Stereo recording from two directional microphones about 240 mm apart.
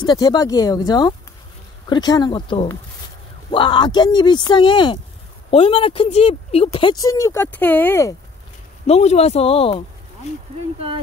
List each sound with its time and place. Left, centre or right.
0.0 s speech: centre
8.8 s speech: left